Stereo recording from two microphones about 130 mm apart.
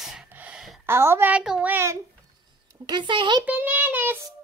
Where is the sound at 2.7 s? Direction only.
35° right (ahead or behind).